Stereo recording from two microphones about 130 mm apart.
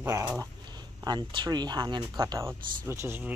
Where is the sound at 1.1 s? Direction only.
35° right (ahead or behind).